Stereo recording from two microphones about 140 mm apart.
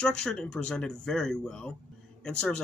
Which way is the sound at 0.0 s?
5° left (ahead or behind).